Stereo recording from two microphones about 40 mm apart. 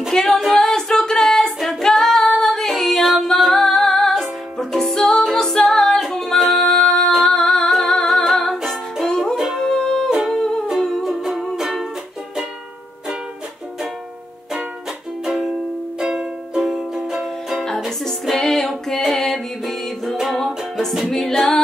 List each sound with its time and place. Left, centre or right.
0.1 s music: centre
0.8 s female singing: centre
4.6 s music: centre
6.6 s music: centre
7.2 s singing: centre
7.9 s humming: centre
9.0 s music: centre
9.3 s music: centre
9.6 s music: centre
11.0 s music: centre
16.0 s music: centre
18.3 s music: centre
21.1 s music: centre